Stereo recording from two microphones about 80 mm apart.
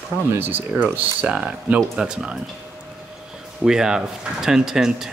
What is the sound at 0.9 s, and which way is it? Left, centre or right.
Speech, centre.